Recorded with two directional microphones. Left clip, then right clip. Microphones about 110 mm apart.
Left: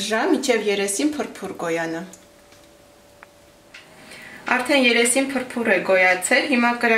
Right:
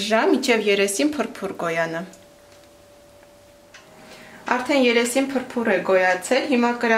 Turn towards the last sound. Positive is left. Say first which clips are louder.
# left 1 dB
turn(degrees=-25)  # may be behind; listen again after turning